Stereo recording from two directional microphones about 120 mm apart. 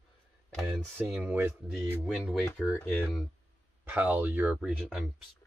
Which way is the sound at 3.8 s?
15° right (ahead or behind).